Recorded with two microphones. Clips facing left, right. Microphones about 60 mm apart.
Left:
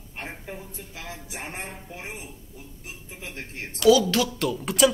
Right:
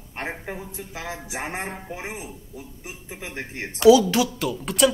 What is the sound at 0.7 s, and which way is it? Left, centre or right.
Speech, centre.